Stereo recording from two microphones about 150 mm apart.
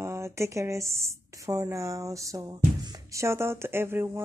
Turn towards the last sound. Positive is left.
turn(degrees=-15)  # may be behind; listen again after turning